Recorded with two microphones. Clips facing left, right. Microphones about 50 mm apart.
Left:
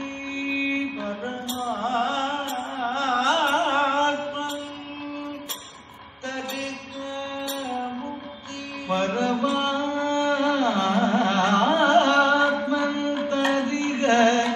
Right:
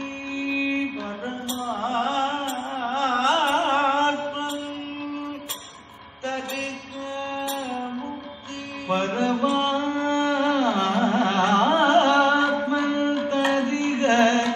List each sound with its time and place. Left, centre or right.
1.7 s music: centre
2.8 s carnatic music: right
3.9 s music: right
6.2 s a sound: right
7.2 s music: right
8.8 s mantra: right
10.3 s carnatic music: centre
12.5 s mantra: right
13.3 s music: right